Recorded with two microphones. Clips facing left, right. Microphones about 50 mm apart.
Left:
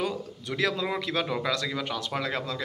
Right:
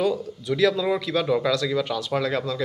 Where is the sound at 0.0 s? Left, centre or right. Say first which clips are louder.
Right 7 dB; left.